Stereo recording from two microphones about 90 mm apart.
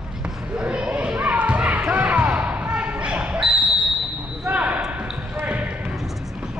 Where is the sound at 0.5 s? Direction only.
15° right (ahead or behind).